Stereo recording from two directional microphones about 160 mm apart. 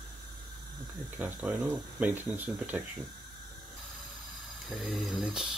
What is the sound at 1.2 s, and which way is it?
Speech, 10° right (ahead or behind).